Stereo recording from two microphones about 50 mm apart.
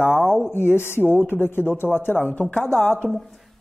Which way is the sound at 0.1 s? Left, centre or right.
Centre.